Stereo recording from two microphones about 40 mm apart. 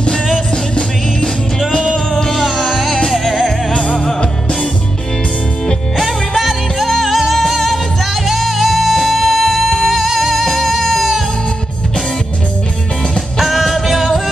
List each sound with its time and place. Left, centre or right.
2.3 s music: centre
3.7 s music: left
5.9 s music: centre
13.4 s music: centre